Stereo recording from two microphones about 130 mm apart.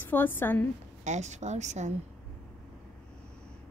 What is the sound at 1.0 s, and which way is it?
Speech, 65° right (ahead or behind).